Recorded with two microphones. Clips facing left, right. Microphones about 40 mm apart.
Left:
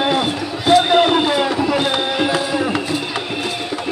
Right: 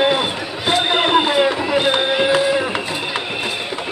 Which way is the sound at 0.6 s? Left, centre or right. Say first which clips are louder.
Left 5 dB; centre.